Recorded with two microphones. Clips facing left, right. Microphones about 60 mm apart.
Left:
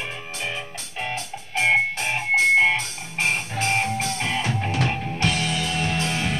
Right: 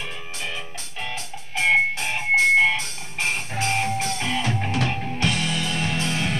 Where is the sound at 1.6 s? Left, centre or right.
Centre.